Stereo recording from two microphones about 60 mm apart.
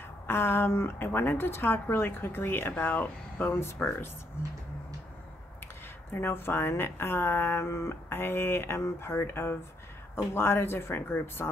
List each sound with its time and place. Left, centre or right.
0.3 s speech: left
6.1 s speech: left